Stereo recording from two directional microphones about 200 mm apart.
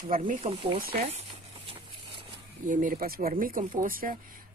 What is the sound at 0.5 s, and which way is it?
Speech, 25° right (ahead or behind).